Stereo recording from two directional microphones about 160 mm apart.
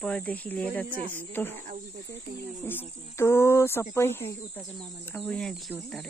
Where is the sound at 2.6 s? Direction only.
15° left (ahead or behind).